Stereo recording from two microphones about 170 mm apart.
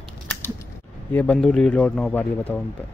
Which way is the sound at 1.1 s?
10° left (ahead or behind).